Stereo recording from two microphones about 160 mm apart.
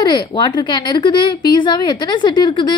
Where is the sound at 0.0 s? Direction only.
30° left (ahead or behind).